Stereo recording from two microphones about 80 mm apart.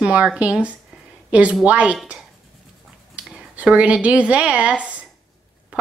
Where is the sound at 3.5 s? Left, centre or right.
Centre.